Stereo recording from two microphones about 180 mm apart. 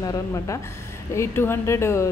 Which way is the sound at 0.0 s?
20° left (ahead or behind).